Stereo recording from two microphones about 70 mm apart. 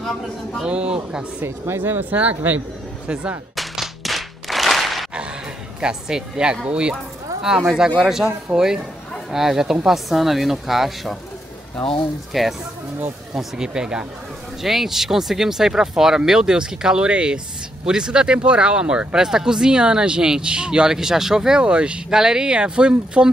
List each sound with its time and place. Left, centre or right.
0.7 s speech: centre
1.4 s speech: right
3.5 s clapping: centre
5.8 s speech: centre
12.3 s speech: centre